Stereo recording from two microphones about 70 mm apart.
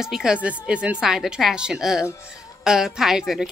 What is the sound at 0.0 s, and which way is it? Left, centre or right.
A woman's voice, centre.